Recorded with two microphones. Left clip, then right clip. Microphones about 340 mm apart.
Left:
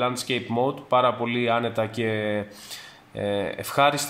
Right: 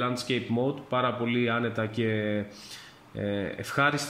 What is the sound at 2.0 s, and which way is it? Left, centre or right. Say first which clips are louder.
Speech: left 3 dB; centre.